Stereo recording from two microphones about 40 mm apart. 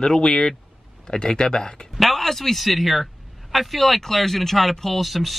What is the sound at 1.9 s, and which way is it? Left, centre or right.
A man's voice, centre.